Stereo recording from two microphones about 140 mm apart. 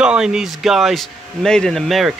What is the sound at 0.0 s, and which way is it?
Speech, 5° right (ahead or behind).